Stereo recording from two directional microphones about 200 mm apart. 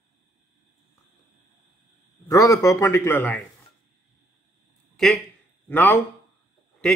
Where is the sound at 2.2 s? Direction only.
15° left (ahead or behind).